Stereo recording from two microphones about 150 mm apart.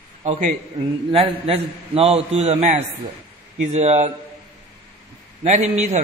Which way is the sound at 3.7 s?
50° right (ahead or behind).